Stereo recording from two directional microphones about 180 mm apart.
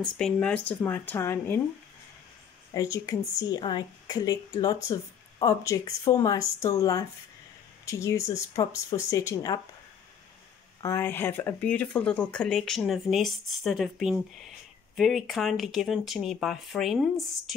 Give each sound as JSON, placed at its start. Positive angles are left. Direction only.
{"t": 0.0, "sound": "speech", "side_deg": 5}
{"t": 2.7, "sound": "a woman's voice", "side_deg": 20}
{"t": 10.8, "sound": "speech", "side_deg": 15}